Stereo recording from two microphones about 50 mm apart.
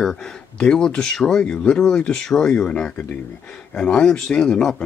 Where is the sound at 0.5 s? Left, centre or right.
Centre.